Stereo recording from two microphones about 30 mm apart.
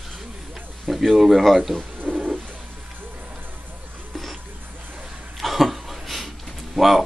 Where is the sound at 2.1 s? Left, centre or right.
Centre.